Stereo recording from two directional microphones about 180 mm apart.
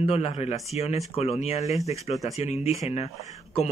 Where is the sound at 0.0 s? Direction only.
35° left (ahead or behind).